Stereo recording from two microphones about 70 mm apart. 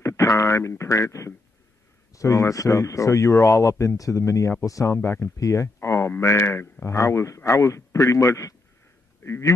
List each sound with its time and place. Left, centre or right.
0.0 s a sound: left
2.1 s speech: left
9.2 s speech: left